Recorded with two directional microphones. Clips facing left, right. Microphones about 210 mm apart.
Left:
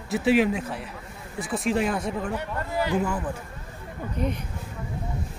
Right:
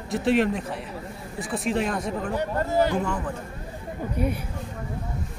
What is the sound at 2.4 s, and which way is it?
Speech, 40° right (ahead or behind).